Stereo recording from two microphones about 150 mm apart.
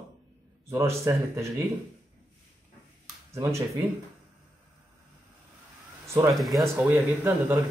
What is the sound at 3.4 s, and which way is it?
Speech, 20° right (ahead or behind).